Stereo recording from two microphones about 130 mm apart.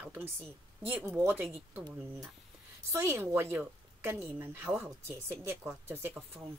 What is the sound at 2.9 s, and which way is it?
A woman's voice, 20° right (ahead or behind).